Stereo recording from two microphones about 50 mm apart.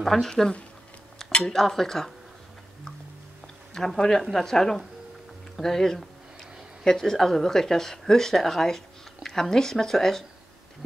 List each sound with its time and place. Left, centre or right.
0.0 s speech: centre
0.3 s speech: centre
1.5 s speech: centre
3.7 s speech: centre